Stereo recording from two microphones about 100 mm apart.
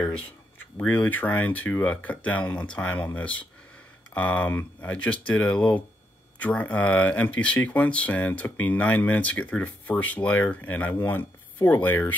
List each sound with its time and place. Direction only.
0.8 s speech: 20° left (ahead or behind)
4.1 s speech: 15° left (ahead or behind)